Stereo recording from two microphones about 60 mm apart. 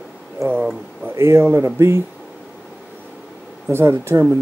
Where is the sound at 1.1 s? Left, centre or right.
Right.